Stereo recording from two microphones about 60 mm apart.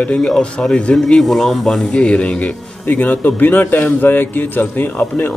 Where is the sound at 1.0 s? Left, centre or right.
Centre.